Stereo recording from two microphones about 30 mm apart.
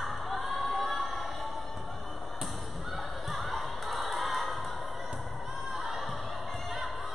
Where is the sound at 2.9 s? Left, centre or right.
Centre.